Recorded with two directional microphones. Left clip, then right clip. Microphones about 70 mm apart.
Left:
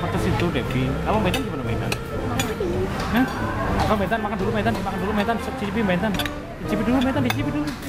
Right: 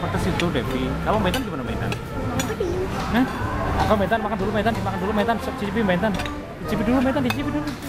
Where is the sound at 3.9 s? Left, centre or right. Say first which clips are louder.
Right 2 dB; centre.